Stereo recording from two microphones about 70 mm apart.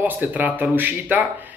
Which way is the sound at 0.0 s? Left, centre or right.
Right.